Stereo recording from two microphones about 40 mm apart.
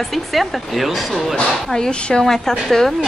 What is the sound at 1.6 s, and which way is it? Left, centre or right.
Speech, centre.